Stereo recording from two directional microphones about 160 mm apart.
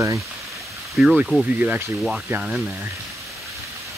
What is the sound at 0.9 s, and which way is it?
Speech, 5° right (ahead or behind).